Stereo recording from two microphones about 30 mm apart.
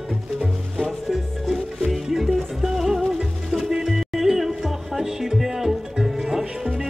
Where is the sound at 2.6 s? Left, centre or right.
Centre.